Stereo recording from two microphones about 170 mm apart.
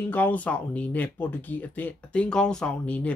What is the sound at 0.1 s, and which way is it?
Speech, 10° left (ahead or behind).